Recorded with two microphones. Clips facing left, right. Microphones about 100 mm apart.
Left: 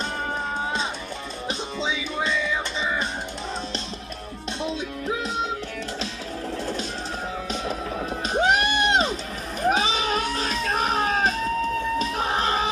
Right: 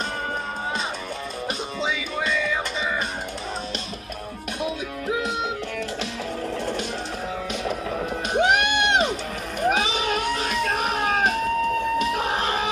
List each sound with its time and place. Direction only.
1.5 s music: 5° right (ahead or behind)
6.6 s music: 35° left (ahead or behind)
8.3 s music: 35° left (ahead or behind)